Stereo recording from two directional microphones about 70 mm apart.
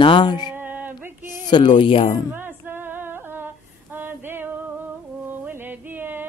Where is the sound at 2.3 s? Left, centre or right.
Right.